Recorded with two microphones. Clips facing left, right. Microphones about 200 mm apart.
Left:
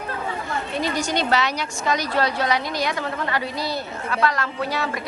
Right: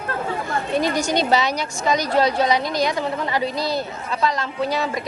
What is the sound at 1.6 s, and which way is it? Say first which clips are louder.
A woman's voice: right 3 dB; 15° right (ahead or behind).